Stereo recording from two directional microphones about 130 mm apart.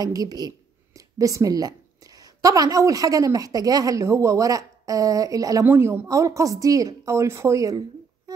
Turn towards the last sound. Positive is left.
turn(degrees=-25)  # may be behind; listen again after turning